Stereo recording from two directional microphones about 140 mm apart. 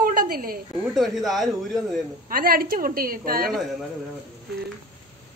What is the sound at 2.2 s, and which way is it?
A woman's voice, 90° right.